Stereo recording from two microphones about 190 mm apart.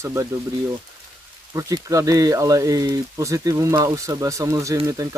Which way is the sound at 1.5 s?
15° right (ahead or behind).